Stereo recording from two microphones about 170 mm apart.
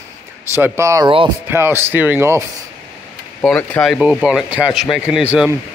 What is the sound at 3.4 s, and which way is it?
Speech, 5° left (ahead or behind).